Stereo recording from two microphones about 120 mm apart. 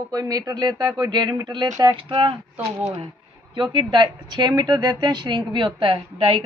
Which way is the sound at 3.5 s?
40° right (ahead or behind).